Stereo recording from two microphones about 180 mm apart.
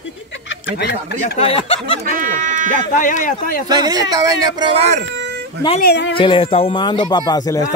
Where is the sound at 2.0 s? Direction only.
45° right (ahead or behind).